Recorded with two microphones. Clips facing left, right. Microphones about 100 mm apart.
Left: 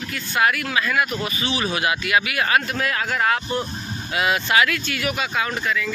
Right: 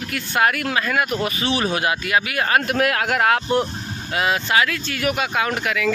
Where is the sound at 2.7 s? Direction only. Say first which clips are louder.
Right 5 dB; 60° right (ahead or behind).